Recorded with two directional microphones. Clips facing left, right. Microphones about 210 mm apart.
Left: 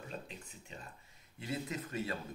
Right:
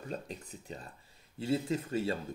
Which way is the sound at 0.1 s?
40° right (ahead or behind).